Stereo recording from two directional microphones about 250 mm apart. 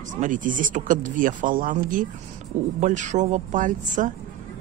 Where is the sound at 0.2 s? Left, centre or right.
Right.